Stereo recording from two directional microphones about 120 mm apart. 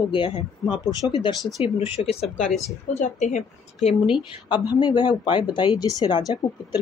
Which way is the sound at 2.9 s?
80° left.